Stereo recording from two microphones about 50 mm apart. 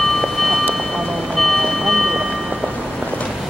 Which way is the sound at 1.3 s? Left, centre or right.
Centre.